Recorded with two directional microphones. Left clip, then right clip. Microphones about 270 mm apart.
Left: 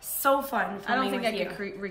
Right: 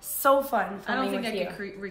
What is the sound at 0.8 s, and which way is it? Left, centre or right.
Speech, centre.